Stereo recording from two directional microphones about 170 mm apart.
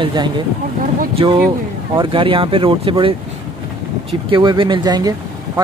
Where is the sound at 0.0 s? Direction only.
25° right (ahead or behind).